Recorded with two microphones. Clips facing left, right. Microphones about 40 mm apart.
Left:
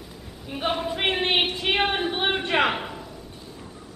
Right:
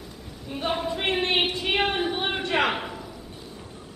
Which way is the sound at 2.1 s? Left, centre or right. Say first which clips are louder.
Left 2 dB; left.